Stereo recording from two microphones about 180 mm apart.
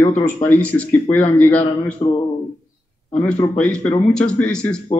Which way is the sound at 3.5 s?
5° left (ahead or behind).